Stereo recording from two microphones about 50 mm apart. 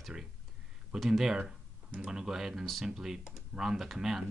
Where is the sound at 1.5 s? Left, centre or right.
Centre.